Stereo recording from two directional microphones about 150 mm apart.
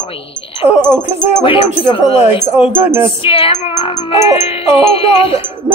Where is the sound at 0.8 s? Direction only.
15° right (ahead or behind).